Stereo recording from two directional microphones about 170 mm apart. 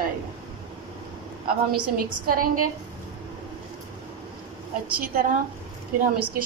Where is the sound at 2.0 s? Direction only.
55° right (ahead or behind).